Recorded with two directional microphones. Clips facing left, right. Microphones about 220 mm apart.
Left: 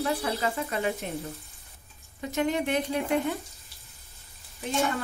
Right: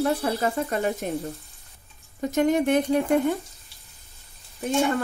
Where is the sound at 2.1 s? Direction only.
45° right (ahead or behind).